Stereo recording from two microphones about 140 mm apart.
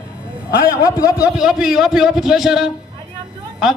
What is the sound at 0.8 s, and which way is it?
Speech, 20° left (ahead or behind).